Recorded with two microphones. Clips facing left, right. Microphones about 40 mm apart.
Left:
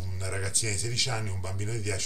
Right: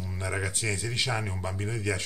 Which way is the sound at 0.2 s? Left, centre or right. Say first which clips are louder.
Right 3 dB; right.